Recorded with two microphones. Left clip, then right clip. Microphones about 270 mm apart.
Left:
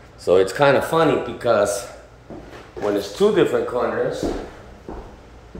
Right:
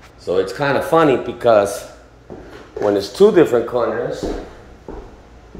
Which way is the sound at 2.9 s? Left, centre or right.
Right.